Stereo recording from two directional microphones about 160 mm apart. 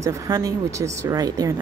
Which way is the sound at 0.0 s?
20° right (ahead or behind).